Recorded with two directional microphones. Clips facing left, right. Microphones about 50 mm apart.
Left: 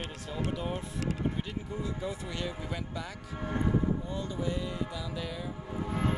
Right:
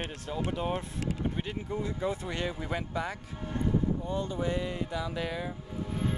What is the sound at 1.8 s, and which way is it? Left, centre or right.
Speech, right.